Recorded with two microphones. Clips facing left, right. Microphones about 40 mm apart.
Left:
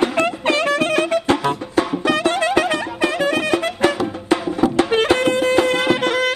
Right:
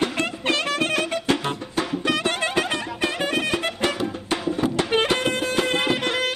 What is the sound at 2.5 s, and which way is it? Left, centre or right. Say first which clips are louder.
Music: left 6 dB; left.